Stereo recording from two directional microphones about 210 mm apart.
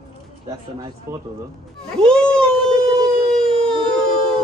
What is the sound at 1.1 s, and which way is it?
Speech, 15° right (ahead or behind).